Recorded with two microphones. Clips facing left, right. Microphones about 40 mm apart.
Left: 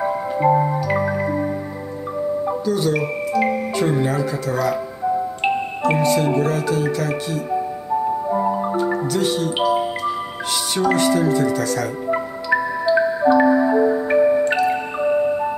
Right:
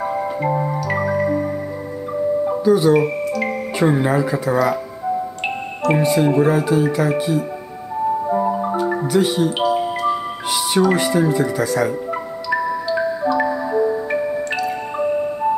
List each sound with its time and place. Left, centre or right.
0.5 s music: centre
2.6 s speech: centre
3.3 s music: centre
3.7 s speech: centre
5.4 s speech: centre
8.3 s music: centre
9.0 s speech: centre
9.7 s music: centre
10.9 s speech: centre
12.1 s music: centre